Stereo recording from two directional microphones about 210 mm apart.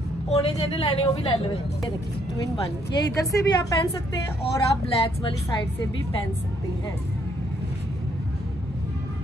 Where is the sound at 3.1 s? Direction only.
15° left (ahead or behind).